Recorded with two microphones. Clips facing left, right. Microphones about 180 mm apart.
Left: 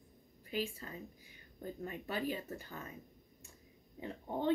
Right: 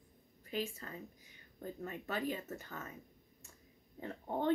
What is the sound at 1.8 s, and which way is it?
Speech, 10° left (ahead or behind).